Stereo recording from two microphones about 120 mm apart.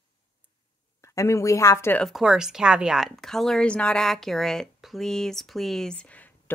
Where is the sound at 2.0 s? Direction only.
Centre (ahead or behind).